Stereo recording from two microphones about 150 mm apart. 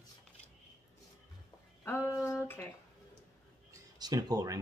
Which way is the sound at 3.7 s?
25° right (ahead or behind).